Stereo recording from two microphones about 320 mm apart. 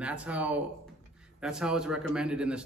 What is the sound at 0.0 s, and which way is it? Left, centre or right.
Speech, centre.